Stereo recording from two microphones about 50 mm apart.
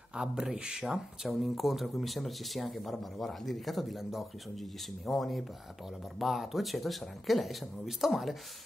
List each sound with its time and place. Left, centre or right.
0.1 s speech: centre
0.8 s speech: centre